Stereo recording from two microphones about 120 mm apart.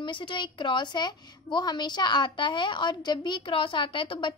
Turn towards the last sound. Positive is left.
turn(degrees=45)  # may be behind; listen again after turning